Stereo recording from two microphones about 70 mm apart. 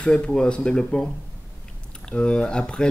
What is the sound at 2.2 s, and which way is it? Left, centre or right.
Mantra, centre.